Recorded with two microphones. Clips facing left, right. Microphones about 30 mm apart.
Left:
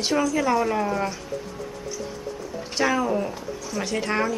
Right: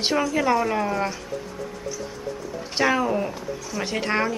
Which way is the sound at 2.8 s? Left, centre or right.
Centre.